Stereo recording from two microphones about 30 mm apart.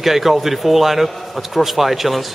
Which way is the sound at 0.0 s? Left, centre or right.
Centre.